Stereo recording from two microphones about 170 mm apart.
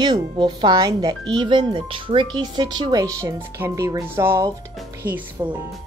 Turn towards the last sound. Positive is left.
turn(degrees=-25)  # may be behind; listen again after turning